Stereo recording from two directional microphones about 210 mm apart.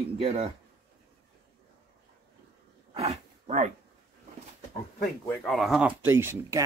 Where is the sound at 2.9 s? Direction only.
30° right (ahead or behind).